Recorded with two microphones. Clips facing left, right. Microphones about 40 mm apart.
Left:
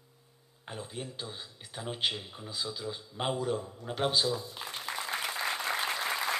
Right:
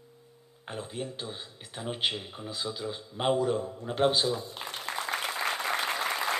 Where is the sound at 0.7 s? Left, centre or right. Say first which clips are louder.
Right 4 dB; centre.